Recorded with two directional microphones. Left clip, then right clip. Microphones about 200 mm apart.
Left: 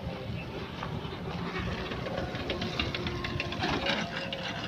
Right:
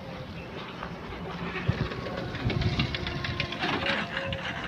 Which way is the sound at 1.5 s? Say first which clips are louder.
Right 2 dB; 45° right (ahead or behind).